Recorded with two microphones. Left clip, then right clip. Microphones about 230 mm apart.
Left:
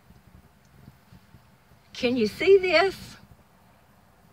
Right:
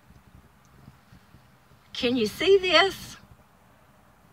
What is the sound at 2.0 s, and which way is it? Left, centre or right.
Speech, centre.